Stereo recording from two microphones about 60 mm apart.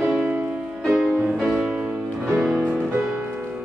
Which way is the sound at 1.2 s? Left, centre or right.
Centre.